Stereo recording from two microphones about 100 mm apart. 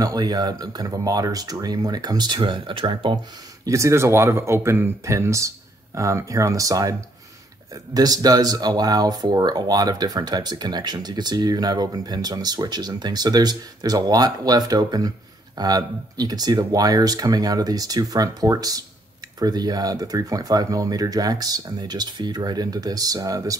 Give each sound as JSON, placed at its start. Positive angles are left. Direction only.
{"t": 0.0, "sound": "speech", "side_deg": -40}
{"t": 3.6, "sound": "speech", "side_deg": -30}